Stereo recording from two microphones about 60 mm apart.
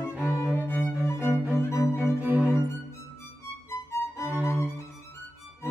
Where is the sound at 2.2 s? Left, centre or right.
Right.